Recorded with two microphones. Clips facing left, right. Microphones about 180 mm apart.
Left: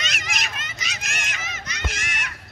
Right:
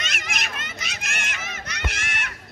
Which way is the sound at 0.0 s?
55° right (ahead or behind).